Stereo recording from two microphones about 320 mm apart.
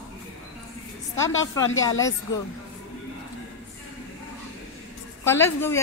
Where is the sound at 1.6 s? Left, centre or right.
Left.